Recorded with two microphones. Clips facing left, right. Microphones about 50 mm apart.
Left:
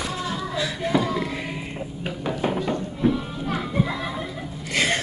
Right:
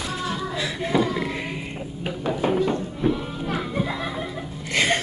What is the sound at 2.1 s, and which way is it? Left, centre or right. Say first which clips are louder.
Music: right 2 dB; centre.